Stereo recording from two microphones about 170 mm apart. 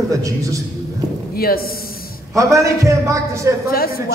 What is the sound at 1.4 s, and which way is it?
Speech, 60° left (ahead or behind).